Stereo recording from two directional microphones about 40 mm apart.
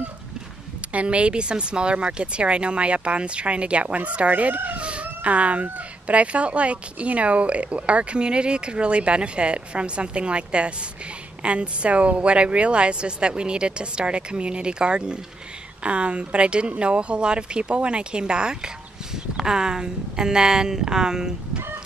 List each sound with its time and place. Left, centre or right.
0.9 s speech: right
4.7 s a woman's voice: right